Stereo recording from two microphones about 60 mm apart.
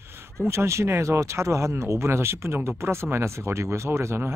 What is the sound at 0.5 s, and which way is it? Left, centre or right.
Speech, right.